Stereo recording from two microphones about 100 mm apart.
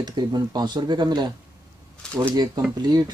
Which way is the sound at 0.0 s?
45° right (ahead or behind).